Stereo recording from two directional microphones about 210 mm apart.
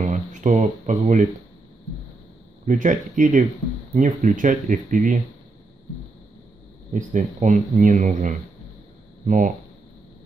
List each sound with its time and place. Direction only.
0.0 s speech: 35° right (ahead or behind)
2.6 s speech: 35° right (ahead or behind)
6.9 s speech: 35° right (ahead or behind)